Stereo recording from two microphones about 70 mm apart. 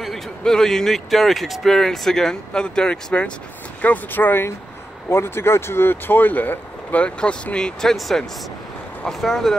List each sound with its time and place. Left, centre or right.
0.0 s speech: centre
3.8 s speech: left; by 9.6 s centre